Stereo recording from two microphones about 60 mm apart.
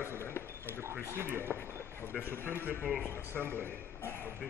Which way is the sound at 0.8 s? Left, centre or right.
Right.